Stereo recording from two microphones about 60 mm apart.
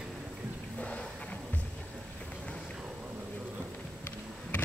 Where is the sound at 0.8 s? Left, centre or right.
Centre.